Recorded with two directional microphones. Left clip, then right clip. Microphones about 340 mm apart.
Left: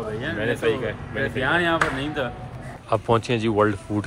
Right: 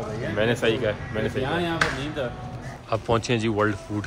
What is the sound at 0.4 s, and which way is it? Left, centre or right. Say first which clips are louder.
Speech: right 1 dB; centre.